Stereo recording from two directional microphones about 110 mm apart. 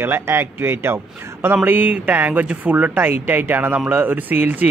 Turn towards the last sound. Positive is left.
turn(degrees=-15)  # may be behind; listen again after turning